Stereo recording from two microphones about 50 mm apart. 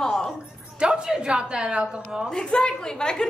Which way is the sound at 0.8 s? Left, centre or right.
Centre.